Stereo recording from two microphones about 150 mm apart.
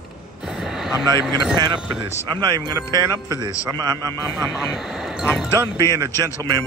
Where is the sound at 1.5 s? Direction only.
30° right (ahead or behind).